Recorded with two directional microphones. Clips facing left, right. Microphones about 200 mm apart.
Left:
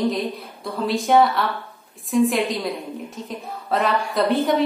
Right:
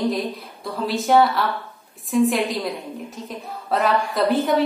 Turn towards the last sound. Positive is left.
turn(degrees=0)  # may be behind; listen again after turning